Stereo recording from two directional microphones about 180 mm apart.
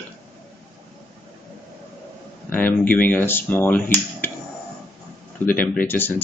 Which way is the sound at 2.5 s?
10° left (ahead or behind).